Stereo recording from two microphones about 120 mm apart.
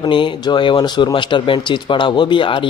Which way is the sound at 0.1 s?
40° left (ahead or behind).